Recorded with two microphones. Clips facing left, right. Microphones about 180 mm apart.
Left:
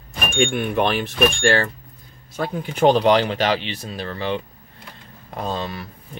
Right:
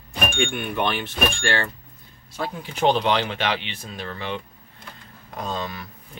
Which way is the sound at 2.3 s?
50° left (ahead or behind).